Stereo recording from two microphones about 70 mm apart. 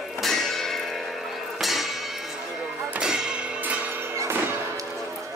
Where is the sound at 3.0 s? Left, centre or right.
Centre.